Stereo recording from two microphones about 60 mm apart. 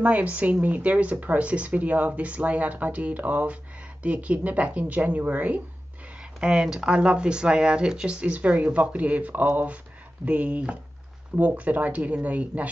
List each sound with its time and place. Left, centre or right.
0.0 s speech: right
6.4 s speech: centre